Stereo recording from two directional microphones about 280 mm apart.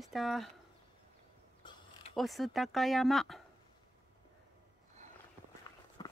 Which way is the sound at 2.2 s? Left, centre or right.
Centre.